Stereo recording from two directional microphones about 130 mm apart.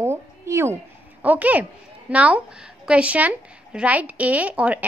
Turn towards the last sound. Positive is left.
turn(degrees=-10)  # may be behind; listen again after turning